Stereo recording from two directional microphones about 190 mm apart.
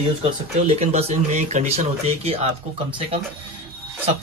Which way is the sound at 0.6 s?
35° right (ahead or behind).